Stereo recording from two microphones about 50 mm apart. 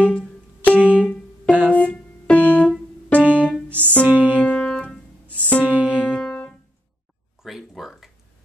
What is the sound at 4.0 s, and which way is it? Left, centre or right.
Music, right.